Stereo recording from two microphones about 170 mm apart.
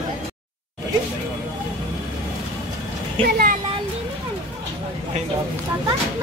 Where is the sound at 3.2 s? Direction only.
60° right (ahead or behind).